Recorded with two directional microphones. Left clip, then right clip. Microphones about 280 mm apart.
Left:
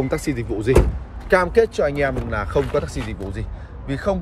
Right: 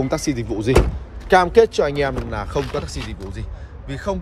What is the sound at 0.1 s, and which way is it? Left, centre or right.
A man's voice, centre.